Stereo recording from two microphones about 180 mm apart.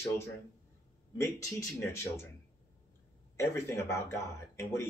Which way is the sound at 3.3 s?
15° left (ahead or behind).